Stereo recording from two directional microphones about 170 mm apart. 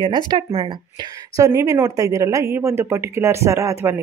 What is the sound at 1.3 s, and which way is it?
Speech, 20° right (ahead or behind).